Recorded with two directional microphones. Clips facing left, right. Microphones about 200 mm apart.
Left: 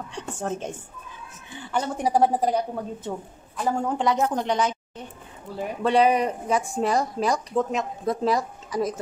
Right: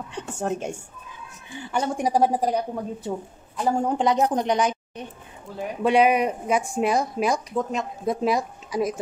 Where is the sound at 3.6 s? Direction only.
15° right (ahead or behind).